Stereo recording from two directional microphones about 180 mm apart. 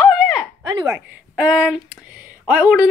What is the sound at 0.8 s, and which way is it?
Speech, 10° right (ahead or behind).